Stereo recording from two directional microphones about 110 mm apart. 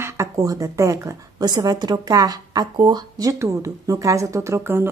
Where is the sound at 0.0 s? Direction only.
25° right (ahead or behind).